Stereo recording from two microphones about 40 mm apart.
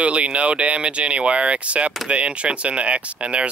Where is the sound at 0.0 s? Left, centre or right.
Right.